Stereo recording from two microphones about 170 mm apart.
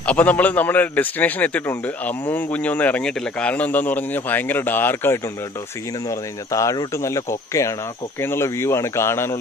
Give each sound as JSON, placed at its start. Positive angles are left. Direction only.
{"t": 0.0, "sound": "a man's voice", "side_deg": 10}